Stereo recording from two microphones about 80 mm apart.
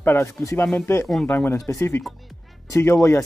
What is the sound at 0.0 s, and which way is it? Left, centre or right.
Speech, left.